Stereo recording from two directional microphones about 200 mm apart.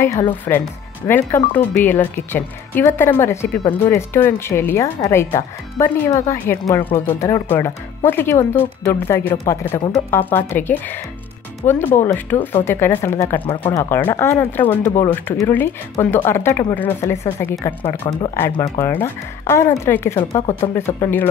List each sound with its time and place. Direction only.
0.0 s speech: 15° left (ahead or behind)
17.8 s speech: 25° left (ahead or behind)
18.3 s speech: 15° left (ahead or behind)